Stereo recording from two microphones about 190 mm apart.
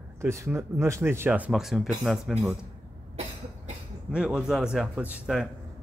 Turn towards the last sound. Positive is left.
turn(degrees=-5)  # may be behind; listen again after turning